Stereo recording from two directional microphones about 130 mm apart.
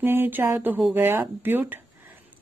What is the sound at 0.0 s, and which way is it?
Speech, 15° right (ahead or behind).